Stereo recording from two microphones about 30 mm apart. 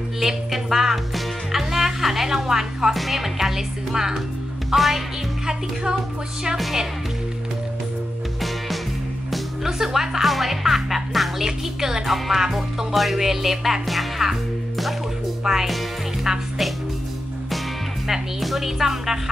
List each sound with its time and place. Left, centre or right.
0.2 s speech: centre
1.5 s music: centre
2.3 s speech: centre
2.9 s speech: centre
4.7 s music: centre
6.5 s speech: centre
9.3 s speech: centre
10.2 s music: centre
11.4 s speech: centre
12.9 s music: centre
13.2 s speech: centre
15.4 s speech: centre
18.4 s speech: centre